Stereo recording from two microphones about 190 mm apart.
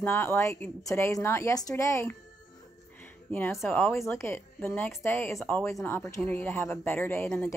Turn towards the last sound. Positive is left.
turn(degrees=10)  # may be behind; listen again after turning